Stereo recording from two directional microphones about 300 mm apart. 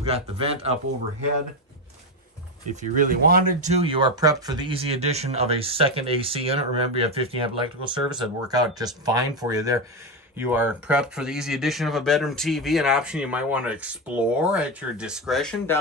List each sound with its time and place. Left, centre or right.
0.0 s speech: centre
2.7 s speech: right; by 15.8 s centre